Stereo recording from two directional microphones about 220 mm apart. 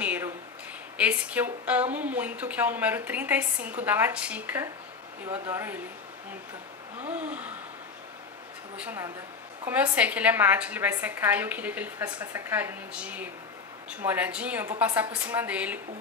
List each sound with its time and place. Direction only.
0.0 s a sound: 5° right (ahead or behind)
0.9 s speech: 5° right (ahead or behind)
7.1 s speech: 5° right (ahead or behind)
8.7 s speech: 10° right (ahead or behind)